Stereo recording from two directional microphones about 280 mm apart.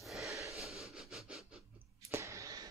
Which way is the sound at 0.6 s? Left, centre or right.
Centre.